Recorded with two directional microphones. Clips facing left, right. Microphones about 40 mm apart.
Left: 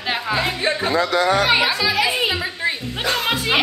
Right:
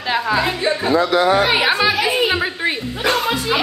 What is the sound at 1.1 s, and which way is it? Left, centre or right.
A woman's voice, right.